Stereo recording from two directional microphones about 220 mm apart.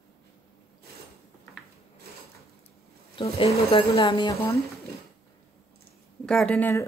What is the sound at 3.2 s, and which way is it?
Speech, 25° left (ahead or behind).